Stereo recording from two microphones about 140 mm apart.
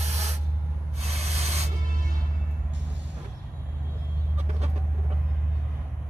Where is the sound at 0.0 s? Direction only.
50° right (ahead or behind).